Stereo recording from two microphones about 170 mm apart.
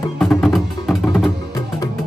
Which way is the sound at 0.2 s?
Centre (ahead or behind).